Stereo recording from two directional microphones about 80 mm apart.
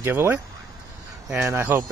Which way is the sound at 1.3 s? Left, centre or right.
Right.